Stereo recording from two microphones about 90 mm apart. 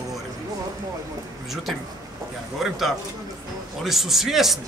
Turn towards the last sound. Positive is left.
turn(degrees=-5)  # may be behind; listen again after turning